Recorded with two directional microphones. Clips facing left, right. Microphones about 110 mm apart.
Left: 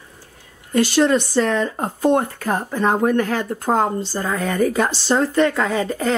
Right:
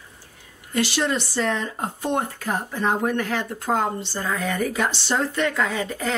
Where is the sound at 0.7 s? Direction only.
45° left (ahead or behind).